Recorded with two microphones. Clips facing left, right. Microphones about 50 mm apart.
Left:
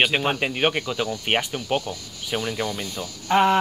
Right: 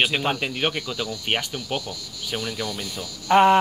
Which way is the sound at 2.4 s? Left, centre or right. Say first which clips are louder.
Left 3 dB; left.